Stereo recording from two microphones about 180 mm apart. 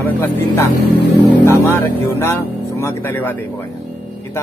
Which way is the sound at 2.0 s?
15° left (ahead or behind).